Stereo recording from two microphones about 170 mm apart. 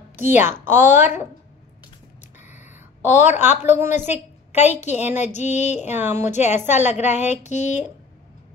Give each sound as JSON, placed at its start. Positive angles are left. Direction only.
{"t": 0.2, "sound": "a woman's voice", "side_deg": -10}
{"t": 3.1, "sound": "a woman's voice", "side_deg": 45}
{"t": 3.7, "sound": "a woman's voice", "side_deg": -15}
{"t": 4.1, "sound": "a woman's voice", "side_deg": 40}
{"t": 5.9, "sound": "a woman's voice", "side_deg": -10}
{"t": 6.2, "sound": "a woman's voice", "side_deg": 45}